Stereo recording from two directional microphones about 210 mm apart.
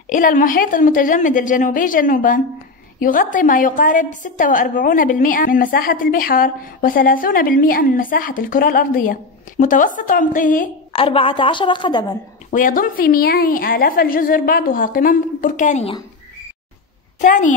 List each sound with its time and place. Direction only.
0.1 s a woman's voice: 40° left (ahead or behind)
10.9 s a woman's voice: 25° left (ahead or behind)
12.4 s a woman's voice: 40° left (ahead or behind)
17.2 s a woman's voice: 35° left (ahead or behind)